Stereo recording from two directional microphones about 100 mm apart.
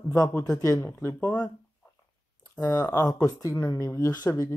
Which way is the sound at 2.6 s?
35° left (ahead or behind).